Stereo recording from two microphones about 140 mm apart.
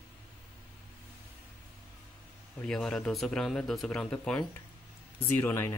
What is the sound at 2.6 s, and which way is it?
Speech, 5° left (ahead or behind).